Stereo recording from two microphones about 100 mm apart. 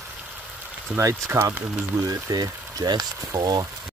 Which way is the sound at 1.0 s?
25° right (ahead or behind).